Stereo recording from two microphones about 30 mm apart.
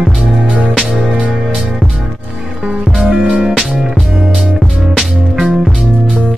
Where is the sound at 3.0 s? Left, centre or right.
Right.